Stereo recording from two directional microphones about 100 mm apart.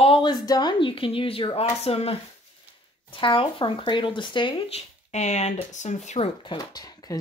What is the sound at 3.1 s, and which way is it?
Speech, 60° left (ahead or behind).